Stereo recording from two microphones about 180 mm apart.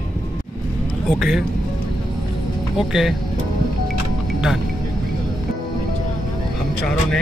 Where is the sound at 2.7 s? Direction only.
5° right (ahead or behind).